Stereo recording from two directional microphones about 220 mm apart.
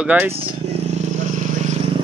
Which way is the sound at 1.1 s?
35° right (ahead or behind).